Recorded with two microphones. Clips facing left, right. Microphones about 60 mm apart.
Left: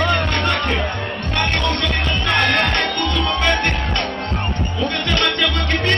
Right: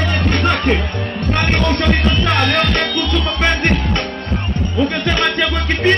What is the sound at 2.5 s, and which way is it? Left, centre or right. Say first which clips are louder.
Music: right 2 dB; left.